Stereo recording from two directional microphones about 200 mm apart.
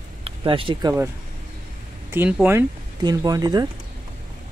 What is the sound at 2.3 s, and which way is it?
Speech, 10° right (ahead or behind).